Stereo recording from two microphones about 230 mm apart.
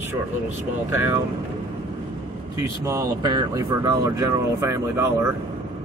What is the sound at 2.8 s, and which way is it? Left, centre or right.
Speech, centre.